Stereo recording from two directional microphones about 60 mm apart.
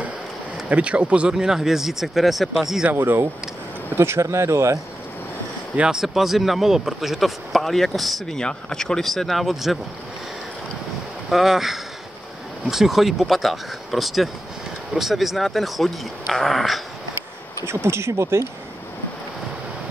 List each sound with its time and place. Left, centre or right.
0.7 s speech: right
1.3 s speech: centre
2.9 s speech: right
3.9 s speech: right
5.8 s speech: centre
8.4 s speech: centre
11.2 s speech: centre
17.6 s speech: right